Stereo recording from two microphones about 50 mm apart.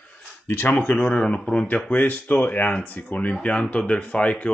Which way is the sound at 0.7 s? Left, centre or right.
Left.